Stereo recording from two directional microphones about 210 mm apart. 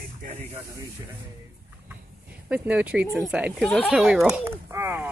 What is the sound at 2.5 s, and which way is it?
Speech, 5° right (ahead or behind).